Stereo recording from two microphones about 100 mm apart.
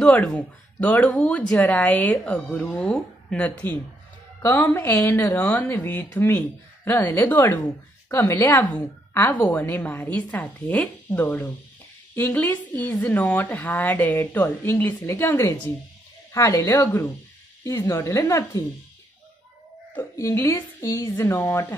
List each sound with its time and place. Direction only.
0.0 s a woman's voice: 10° left (ahead or behind)
4.4 s a woman's voice: 25° left (ahead or behind)
20.0 s a woman's voice: 30° left (ahead or behind)